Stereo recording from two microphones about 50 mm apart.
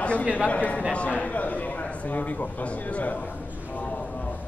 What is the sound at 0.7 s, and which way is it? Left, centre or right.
A man's voice, left.